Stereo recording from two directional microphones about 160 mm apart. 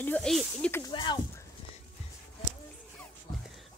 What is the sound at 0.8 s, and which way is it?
Speech, 25° left (ahead or behind).